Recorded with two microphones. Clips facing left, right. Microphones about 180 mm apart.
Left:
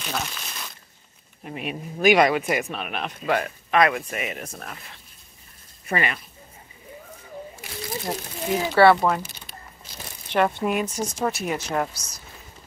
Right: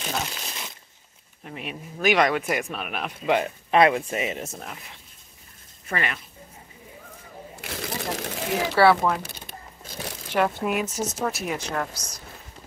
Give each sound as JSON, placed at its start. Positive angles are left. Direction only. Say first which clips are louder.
{"t": 0.3, "sound": "crumpling", "louder": "right 1 dB", "side_deg": -25}
{"t": 1.4, "sound": "speech", "louder": "left 4 dB", "side_deg": 15}
{"t": 3.3, "sound": "speech", "louder": "right 2 dB", "side_deg": -20}
{"t": 5.9, "sound": "speech", "louder": "left 3 dB", "side_deg": 10}
{"t": 7.6, "sound": "a sound", "louder": "even", "side_deg": -75}
{"t": 8.7, "sound": "speech", "louder": "left 2 dB", "side_deg": 0}
{"t": 9.8, "sound": "a sound", "louder": "right 9 dB", "side_deg": -70}
{"t": 10.3, "sound": "speech", "louder": "left 2 dB", "side_deg": -5}
{"t": 11.7, "sound": "speech", "louder": "left 3 dB", "side_deg": 10}